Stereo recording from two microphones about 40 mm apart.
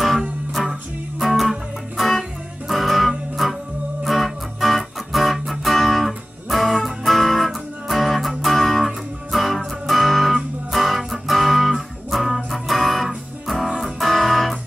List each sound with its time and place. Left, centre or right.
0.6 s music: centre